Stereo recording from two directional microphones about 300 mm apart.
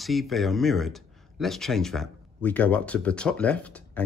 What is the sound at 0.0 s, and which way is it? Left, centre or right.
Speech, centre.